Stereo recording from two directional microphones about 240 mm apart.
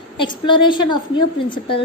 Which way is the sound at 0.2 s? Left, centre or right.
Centre.